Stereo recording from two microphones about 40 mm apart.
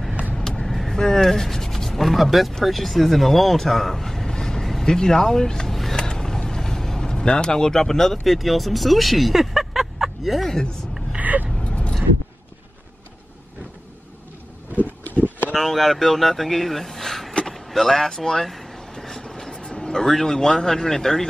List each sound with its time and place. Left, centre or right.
0.4 s vehicle: centre
0.9 s speech: centre
5.7 s a sound: centre
5.9 s vehicle: centre
11.1 s vehicle: right
11.6 s vehicle: left
14.8 s a sound: left
15.5 s speech: centre
18.8 s a sound: centre